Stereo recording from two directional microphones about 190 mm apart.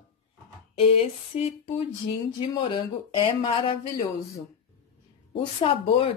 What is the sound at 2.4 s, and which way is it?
Speech, 25° left (ahead or behind).